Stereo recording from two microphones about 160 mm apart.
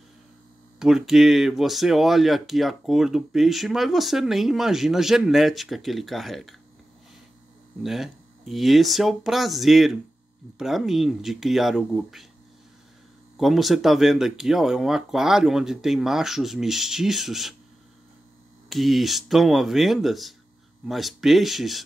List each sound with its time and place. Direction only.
0.7 s speech: centre (ahead or behind)
7.8 s speech: centre (ahead or behind)
13.4 s speech: centre (ahead or behind)
18.7 s speech: centre (ahead or behind)